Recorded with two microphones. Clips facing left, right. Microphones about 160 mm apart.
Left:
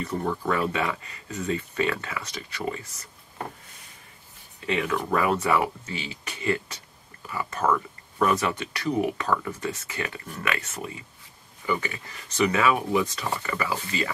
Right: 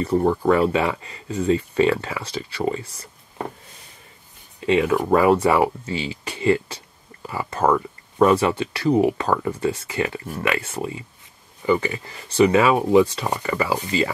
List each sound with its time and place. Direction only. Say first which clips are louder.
0.0 s speech: right 9 dB; 35° right (ahead or behind)
4.6 s speech: right 8 dB; 25° right (ahead or behind)